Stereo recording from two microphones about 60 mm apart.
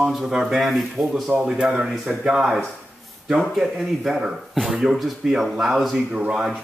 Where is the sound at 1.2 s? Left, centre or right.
Centre.